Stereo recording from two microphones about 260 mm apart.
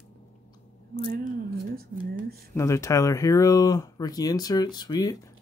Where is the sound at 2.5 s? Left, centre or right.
Centre.